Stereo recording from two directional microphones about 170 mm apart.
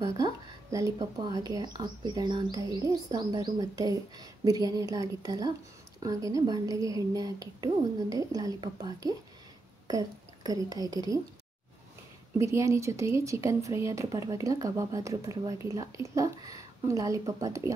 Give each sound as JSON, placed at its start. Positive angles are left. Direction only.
{"t": 0.2, "sound": "speech", "side_deg": -20}
{"t": 12.4, "sound": "speech", "side_deg": -20}